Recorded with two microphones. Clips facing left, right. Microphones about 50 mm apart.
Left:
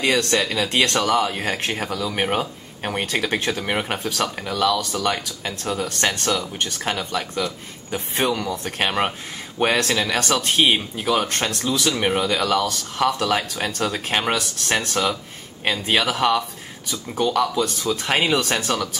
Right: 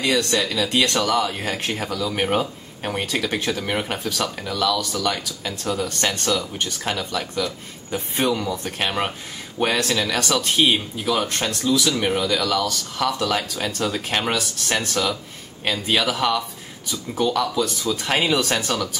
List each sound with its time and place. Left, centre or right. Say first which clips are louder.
0.0 s speech: left 1 dB; left
11.5 s speech: right 3 dB; left
11.8 s speech: left 1 dB; left